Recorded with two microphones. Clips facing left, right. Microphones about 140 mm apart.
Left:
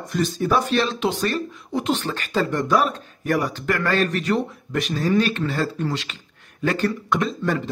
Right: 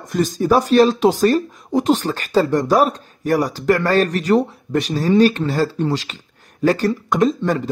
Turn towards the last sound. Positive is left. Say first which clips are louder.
# right 6 dB
turn(degrees=-40)  # may be behind; listen again after turning